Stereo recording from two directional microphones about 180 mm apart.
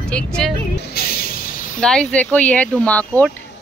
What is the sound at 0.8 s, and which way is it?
Music, 55° left (ahead or behind).